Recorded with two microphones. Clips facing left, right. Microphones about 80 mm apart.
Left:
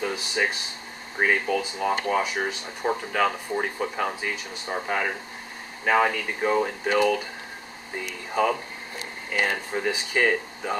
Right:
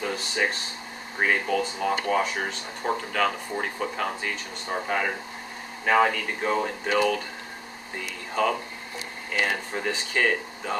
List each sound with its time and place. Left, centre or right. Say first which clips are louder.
0.0 s speech: left 1 dB; centre
8.4 s speech: left 1 dB; centre
9.8 s speech: left 3 dB; centre